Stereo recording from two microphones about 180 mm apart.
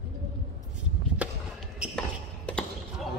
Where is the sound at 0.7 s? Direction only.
5° right (ahead or behind).